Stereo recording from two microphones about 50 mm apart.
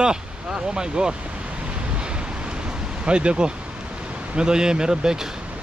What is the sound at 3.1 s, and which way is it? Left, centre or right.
Speech, right.